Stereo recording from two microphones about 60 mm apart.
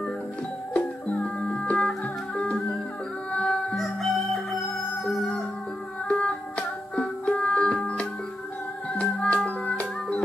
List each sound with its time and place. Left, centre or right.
0.7 s music: left
3.7 s crowing: centre
5.0 s music: centre
6.0 s music: centre
9.1 s music: left